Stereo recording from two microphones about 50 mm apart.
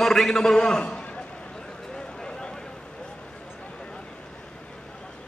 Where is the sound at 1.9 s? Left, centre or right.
Centre.